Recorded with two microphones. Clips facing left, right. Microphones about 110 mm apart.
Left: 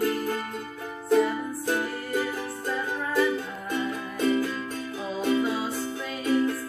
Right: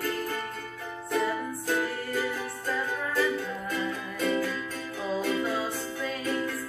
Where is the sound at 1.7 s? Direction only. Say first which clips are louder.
Left 1 dB; 15° left (ahead or behind).